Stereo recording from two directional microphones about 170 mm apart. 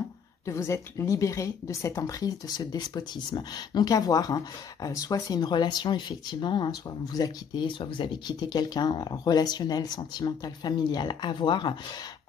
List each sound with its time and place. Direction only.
0.5 s speech: 15° left (ahead or behind)